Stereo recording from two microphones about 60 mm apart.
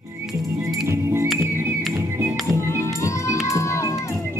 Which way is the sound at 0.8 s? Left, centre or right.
Right.